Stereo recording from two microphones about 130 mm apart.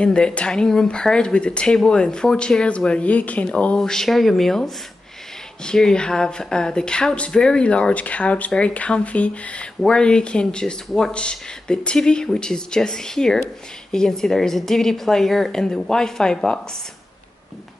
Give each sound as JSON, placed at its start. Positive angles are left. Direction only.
{"t": 0.0, "sound": "a woman's voice", "side_deg": 5}